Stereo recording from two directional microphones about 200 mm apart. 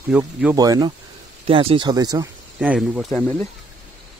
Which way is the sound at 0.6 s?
20° right (ahead or behind).